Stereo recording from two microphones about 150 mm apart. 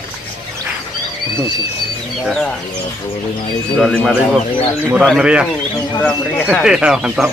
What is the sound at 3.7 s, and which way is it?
Speech, centre (ahead or behind).